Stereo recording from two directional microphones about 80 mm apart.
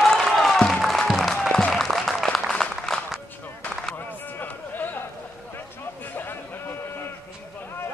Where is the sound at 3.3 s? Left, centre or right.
Left.